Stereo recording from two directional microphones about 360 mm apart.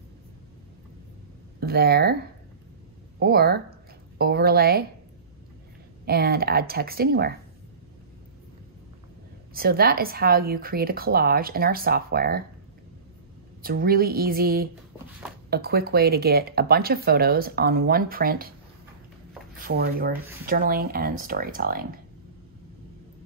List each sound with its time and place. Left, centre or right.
1.6 s speech: right
3.2 s speech: right
6.0 s speech: right
9.5 s speech: right
13.6 s speech: right
19.6 s speech: right